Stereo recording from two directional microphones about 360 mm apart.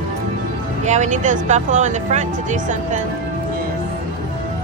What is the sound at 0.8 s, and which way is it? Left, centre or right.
Speech, centre.